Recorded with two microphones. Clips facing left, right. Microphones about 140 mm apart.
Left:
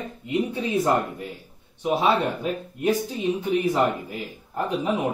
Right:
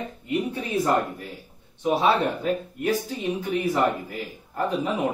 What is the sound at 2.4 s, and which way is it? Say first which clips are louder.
Speech: right 1 dB; 15° left (ahead or behind).